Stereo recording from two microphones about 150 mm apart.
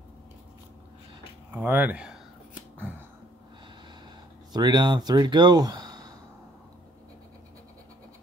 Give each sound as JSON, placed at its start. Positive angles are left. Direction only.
{"t": 1.5, "sound": "speech", "side_deg": -10}
{"t": 4.5, "sound": "speech", "side_deg": -30}